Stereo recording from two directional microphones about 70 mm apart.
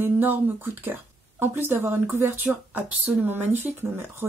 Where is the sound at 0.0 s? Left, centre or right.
Right.